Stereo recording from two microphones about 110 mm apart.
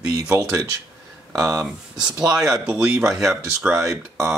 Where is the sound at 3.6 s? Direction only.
15° right (ahead or behind).